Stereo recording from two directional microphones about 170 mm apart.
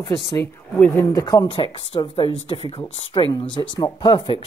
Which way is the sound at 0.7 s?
5° left (ahead or behind).